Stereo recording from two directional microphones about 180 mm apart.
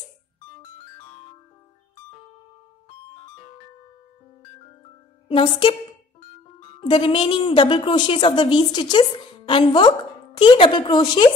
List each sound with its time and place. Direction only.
5.3 s a woman's voice: 30° left (ahead or behind)
6.8 s a woman's voice: 30° left (ahead or behind)